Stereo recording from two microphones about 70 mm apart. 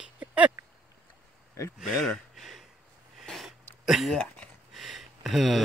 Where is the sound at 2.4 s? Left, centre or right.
Centre.